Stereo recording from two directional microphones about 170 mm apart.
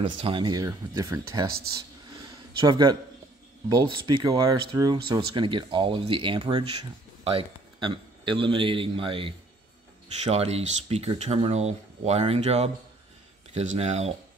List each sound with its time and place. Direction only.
0.0 s speech: 30° right (ahead or behind)
2.6 s a man's voice: 25° right (ahead or behind)